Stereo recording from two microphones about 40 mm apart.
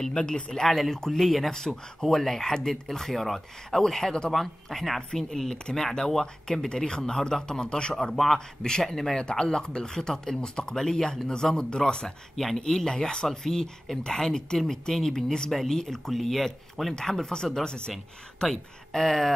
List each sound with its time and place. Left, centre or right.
0.0 s speech: centre
0.7 s speech: centre
4.3 s speech: centre; by 7.9 s left
8.1 s speech: centre
9.1 s speech: centre